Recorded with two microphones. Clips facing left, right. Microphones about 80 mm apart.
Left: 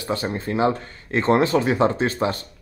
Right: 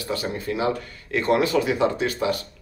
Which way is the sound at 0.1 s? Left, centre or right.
Left.